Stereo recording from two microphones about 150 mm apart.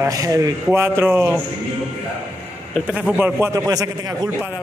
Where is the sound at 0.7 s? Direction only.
15° right (ahead or behind).